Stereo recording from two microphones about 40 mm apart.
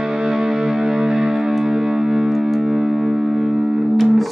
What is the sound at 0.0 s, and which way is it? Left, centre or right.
Music, centre.